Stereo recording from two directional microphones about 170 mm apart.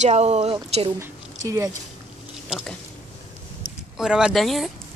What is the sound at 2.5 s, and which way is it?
Speech, 5° right (ahead or behind).